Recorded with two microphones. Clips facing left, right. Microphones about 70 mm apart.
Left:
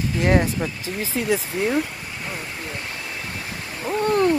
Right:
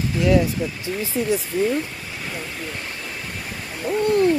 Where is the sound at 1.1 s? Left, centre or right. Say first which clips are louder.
Right 1 dB; left.